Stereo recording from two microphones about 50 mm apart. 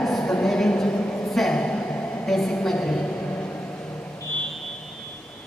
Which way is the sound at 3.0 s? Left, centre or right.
Left.